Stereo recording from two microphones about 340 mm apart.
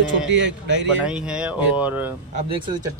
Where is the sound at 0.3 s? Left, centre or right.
Right.